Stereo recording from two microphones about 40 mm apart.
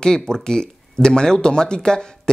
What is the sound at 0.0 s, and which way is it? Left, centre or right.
Speech, centre.